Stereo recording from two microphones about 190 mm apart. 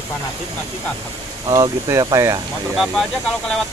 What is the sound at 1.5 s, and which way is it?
Speech, 15° right (ahead or behind).